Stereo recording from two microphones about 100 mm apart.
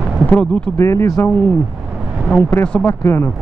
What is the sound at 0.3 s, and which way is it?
Speech, 10° left (ahead or behind).